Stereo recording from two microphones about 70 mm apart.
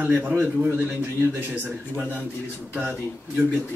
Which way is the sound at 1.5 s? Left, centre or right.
Centre.